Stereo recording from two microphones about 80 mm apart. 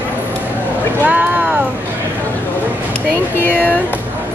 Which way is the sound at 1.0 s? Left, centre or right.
Right.